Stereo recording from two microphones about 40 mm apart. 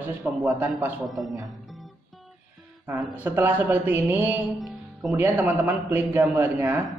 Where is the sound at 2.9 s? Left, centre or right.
Right.